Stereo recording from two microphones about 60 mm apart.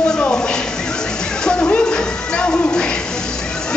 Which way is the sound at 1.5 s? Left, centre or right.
Left.